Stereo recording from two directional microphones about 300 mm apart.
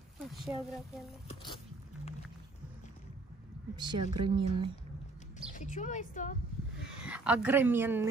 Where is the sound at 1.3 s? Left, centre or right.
Centre.